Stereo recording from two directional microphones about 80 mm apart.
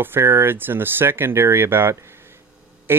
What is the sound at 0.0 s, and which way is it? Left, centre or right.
Speech, right.